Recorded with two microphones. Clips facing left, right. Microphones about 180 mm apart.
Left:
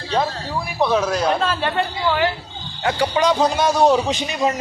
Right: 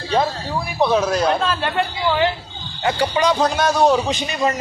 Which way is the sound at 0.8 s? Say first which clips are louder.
Right 1 dB; 5° right (ahead or behind).